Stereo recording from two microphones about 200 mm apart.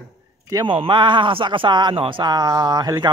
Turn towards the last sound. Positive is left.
turn(degrees=-20)  # may be behind; listen again after turning